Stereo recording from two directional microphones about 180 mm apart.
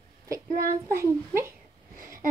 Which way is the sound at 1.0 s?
15° right (ahead or behind).